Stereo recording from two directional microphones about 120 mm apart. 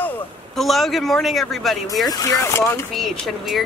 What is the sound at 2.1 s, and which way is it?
Speech, 30° left (ahead or behind).